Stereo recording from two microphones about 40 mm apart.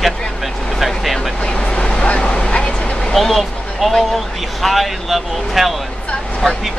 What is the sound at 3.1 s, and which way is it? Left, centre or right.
Speech, centre.